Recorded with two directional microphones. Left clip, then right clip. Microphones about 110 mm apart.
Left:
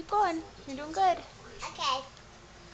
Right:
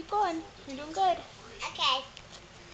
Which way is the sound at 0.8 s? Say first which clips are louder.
Left 1 dB; 15° left (ahead or behind).